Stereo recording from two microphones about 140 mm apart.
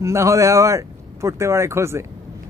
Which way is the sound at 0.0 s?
20° right (ahead or behind).